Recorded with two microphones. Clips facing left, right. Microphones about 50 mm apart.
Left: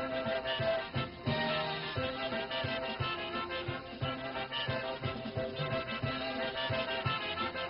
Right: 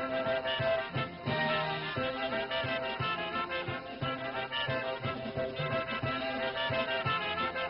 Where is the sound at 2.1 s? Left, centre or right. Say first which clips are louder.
Right 3 dB; centre.